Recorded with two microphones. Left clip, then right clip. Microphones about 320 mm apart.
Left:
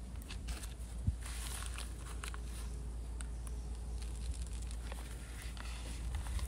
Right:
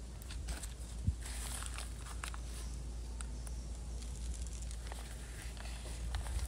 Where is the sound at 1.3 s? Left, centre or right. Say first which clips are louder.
Right 1 dB; centre.